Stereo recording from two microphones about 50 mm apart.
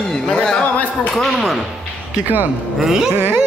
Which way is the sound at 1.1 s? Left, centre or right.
Centre.